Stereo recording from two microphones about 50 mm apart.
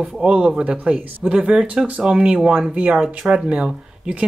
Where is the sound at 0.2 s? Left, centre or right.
Right.